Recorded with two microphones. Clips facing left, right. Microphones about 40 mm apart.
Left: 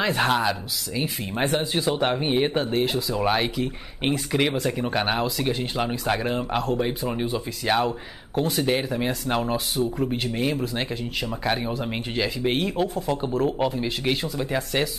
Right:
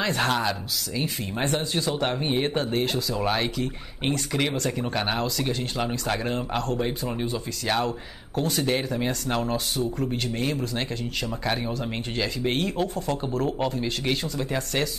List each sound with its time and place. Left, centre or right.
0.0 s speech: centre